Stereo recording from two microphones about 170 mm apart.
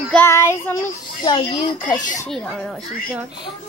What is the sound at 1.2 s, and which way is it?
Speech, 25° left (ahead or behind).